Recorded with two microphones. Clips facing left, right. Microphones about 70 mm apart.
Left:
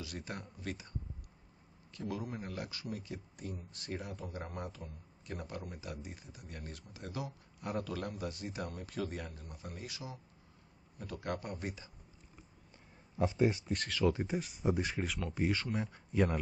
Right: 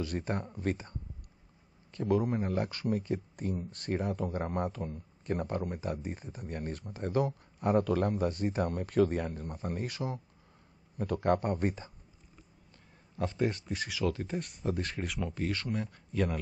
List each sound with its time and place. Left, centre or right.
0.0 s speech: right
13.2 s speech: centre